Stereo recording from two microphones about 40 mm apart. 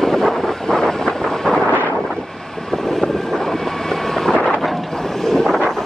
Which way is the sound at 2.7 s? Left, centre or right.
Centre.